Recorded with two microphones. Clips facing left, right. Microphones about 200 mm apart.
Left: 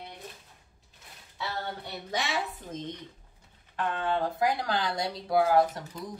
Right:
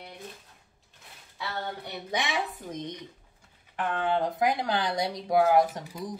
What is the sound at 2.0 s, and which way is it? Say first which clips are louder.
Speech: right 1 dB; 15° right (ahead or behind).